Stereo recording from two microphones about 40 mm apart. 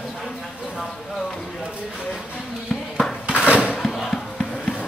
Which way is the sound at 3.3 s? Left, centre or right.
Right.